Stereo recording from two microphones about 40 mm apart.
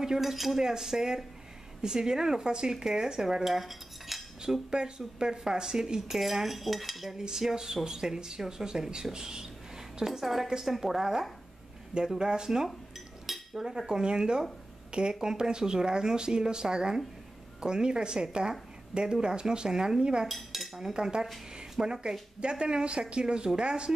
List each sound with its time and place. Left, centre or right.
0.0 s speech: centre
4.6 s speech: centre
7.2 s speech: centre
13.3 s cutlery: centre
14.9 s speech: right
20.2 s dishes: centre
20.9 s speech: centre